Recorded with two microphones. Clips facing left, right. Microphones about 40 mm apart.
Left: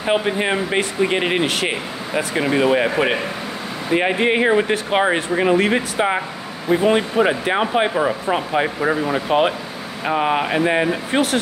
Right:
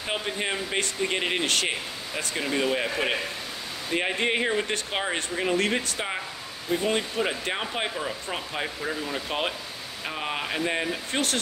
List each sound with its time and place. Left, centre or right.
0.0 s speech: left
1.7 s speech: left
3.9 s speech: centre
7.9 s speech: left
8.3 s speech: left
8.8 s speech: left
10.0 s speech: left
11.1 s speech: centre